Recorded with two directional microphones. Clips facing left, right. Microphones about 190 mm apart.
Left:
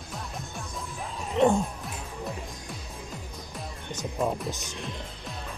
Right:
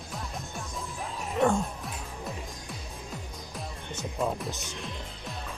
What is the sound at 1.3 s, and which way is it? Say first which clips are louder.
Music: left 3 dB; 20° left (ahead or behind).